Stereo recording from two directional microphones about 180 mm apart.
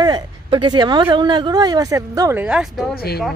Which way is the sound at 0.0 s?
25° right (ahead or behind).